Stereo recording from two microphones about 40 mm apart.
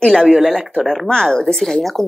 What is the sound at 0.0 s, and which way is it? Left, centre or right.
Speech, centre.